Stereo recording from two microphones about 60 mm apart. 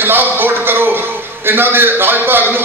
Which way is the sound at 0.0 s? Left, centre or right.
Right.